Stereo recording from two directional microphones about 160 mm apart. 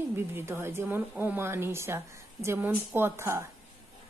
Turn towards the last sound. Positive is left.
turn(degrees=-15)  # may be behind; listen again after turning